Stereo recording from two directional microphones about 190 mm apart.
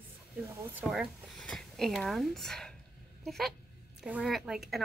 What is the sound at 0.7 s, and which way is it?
Speech, 5° right (ahead or behind).